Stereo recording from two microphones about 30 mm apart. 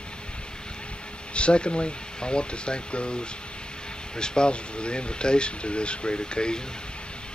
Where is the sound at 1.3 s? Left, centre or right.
Left.